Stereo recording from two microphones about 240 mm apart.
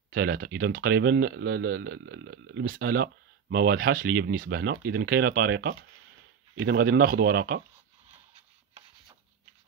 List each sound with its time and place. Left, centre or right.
0.1 s speech: right